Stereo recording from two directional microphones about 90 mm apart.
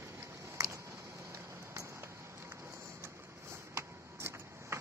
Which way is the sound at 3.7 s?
30° right (ahead or behind).